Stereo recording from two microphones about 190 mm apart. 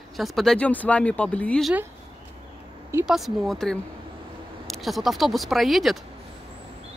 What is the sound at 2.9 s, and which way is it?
Speech, centre (ahead or behind).